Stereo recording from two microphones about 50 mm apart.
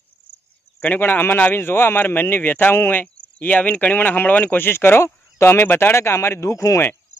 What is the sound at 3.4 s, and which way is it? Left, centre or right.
Speech, left.